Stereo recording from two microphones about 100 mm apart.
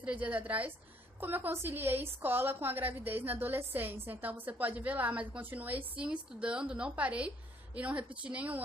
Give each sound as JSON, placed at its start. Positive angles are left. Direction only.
{"t": 0.0, "sound": "a woman's voice", "side_deg": -15}